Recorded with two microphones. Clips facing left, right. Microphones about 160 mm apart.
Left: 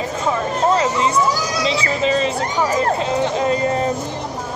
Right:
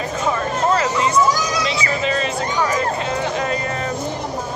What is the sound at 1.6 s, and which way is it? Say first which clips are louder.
Speech: left 2 dB; 30° left (ahead or behind).